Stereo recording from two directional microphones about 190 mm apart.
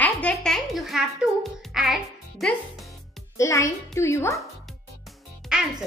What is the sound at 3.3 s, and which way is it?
A child's voice, 15° left (ahead or behind).